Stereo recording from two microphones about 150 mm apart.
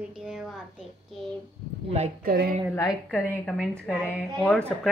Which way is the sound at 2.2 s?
90° right.